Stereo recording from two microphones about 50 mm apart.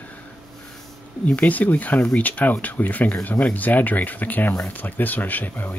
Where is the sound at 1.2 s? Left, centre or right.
Left.